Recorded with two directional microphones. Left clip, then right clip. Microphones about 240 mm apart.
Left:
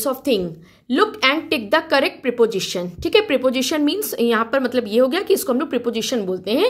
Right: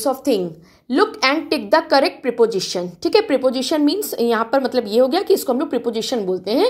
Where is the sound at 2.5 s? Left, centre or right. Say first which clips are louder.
Right 1 dB; left.